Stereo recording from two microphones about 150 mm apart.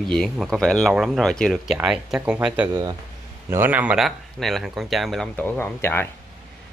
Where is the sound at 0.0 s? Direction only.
5° left (ahead or behind).